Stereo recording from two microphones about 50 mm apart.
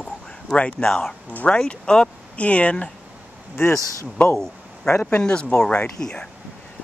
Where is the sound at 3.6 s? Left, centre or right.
Left.